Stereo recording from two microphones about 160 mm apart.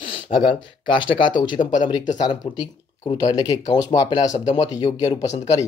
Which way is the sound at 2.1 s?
25° left (ahead or behind).